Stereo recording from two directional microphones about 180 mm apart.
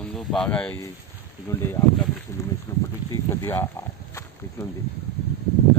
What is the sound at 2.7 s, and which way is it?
Speech, 20° left (ahead or behind).